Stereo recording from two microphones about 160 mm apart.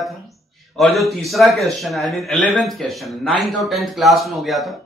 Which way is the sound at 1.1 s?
Centre (ahead or behind).